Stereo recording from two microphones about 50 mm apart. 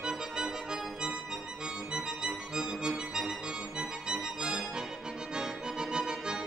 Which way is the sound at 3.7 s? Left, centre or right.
Centre.